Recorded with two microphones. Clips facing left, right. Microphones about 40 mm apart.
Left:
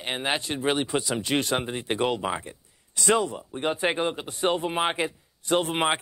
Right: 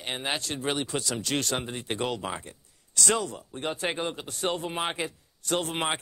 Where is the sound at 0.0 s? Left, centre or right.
Centre.